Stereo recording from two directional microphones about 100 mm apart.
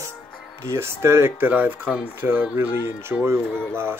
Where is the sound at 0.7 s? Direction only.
25° right (ahead or behind).